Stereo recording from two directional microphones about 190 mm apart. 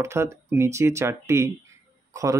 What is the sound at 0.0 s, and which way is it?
Speech, 15° right (ahead or behind).